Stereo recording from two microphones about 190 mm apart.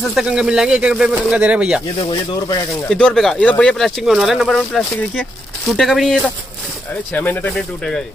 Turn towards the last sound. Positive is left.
turn(degrees=5)  # may be behind; listen again after turning